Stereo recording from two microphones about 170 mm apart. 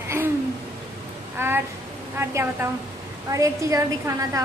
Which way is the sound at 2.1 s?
15° right (ahead or behind).